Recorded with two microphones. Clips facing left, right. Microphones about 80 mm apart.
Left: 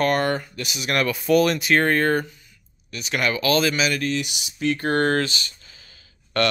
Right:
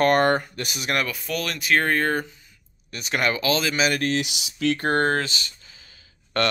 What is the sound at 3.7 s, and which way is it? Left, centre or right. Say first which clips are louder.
Speech: right 1 dB; right.